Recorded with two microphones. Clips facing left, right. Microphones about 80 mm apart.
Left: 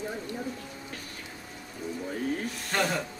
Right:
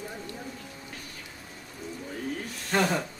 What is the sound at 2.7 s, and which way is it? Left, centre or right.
Speech, centre.